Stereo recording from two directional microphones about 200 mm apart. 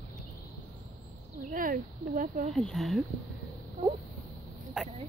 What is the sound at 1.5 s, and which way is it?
Speech, 45° right (ahead or behind).